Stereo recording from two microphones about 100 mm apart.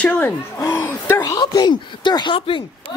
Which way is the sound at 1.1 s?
40° left (ahead or behind).